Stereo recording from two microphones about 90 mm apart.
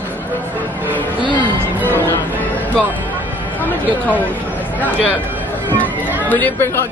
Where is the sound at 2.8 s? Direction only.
20° right (ahead or behind).